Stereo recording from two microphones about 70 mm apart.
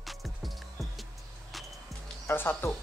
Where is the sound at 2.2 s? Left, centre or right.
Left.